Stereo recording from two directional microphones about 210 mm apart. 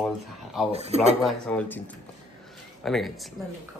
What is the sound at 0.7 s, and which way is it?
Speech, 30° right (ahead or behind).